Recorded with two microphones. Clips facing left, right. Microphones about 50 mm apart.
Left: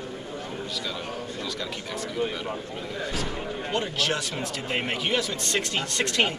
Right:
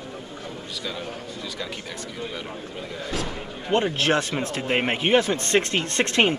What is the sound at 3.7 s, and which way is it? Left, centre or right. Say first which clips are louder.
Speech: right 7 dB; right.